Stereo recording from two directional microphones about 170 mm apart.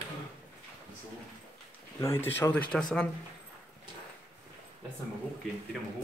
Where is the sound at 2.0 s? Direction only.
15° left (ahead or behind).